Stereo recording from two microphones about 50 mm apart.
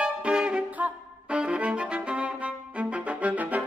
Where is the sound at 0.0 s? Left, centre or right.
Centre.